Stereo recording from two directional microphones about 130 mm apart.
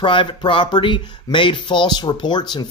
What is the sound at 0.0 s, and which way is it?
Speech, 40° left (ahead or behind).